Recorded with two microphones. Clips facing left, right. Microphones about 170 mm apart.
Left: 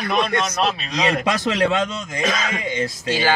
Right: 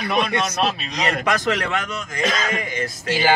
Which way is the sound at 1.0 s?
20° left (ahead or behind).